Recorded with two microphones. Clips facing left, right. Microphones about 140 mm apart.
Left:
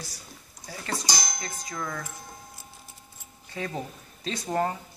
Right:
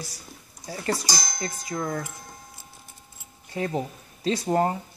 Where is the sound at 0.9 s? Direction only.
5° right (ahead or behind).